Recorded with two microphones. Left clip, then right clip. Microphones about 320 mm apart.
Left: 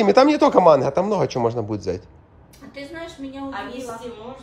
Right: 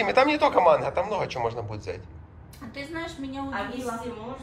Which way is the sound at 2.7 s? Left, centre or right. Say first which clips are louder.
Left 1 dB; centre.